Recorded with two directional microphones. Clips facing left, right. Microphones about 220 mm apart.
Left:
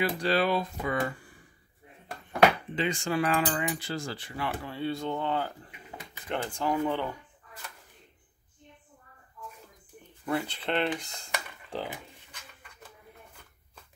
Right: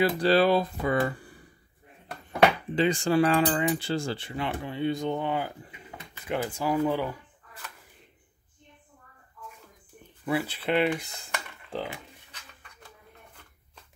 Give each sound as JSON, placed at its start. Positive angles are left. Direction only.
{"t": 0.2, "sound": "speech", "side_deg": -35}
{"t": 2.7, "sound": "cutlery", "side_deg": -35}
{"t": 6.2, "sound": "speech", "side_deg": -10}
{"t": 10.2, "sound": "speech", "side_deg": -5}